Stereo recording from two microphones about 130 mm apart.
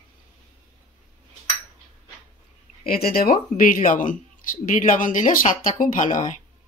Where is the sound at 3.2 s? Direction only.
90° left.